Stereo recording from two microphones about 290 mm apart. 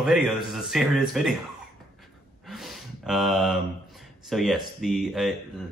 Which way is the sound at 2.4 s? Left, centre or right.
Centre.